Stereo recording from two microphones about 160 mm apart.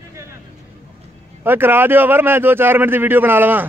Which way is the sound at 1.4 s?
15° right (ahead or behind).